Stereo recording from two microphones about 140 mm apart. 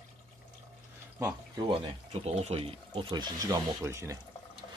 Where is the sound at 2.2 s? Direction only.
45° right (ahead or behind); by 4.2 s 20° right (ahead or behind).